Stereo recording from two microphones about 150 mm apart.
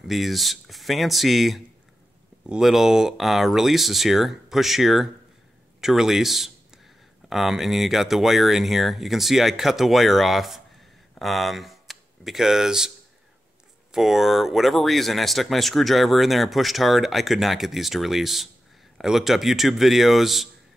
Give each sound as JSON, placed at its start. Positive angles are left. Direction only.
{"t": 0.0, "sound": "speech", "side_deg": 0}
{"t": 13.9, "sound": "speech", "side_deg": 0}